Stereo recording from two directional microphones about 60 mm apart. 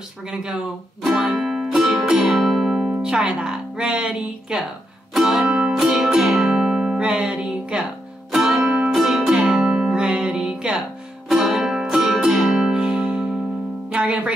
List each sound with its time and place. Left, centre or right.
0.3 s speech: centre
1.1 s music: centre
3.0 s speech: centre
5.1 s music: centre